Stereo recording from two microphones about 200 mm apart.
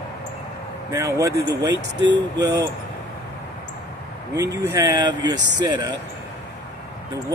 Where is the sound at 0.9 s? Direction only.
15° right (ahead or behind).